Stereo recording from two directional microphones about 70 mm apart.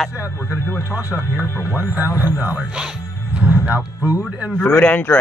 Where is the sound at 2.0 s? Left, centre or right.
Right.